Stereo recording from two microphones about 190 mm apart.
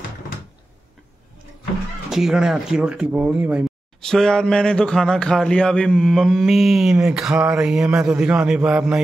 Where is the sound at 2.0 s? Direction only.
Centre (ahead or behind).